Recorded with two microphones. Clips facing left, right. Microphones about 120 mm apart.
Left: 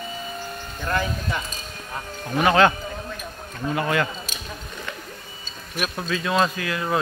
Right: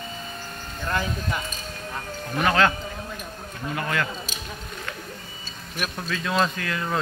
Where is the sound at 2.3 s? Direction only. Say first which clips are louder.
Left 4 dB; 20° left (ahead or behind).